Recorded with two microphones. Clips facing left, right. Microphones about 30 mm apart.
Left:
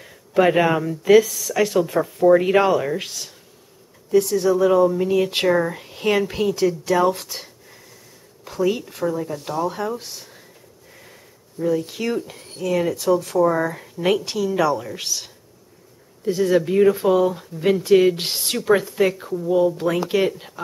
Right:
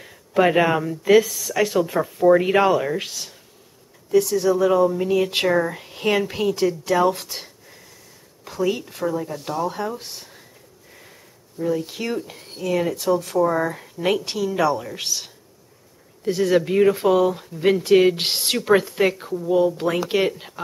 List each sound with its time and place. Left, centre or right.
0.0 s speech: centre
9.9 s speech: centre
16.3 s speech: right
16.5 s speech: centre
18.1 s speech: right